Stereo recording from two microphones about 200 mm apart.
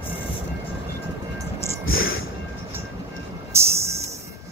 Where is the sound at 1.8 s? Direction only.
90° left.